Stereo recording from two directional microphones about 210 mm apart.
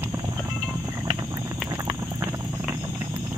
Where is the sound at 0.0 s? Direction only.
15° right (ahead or behind).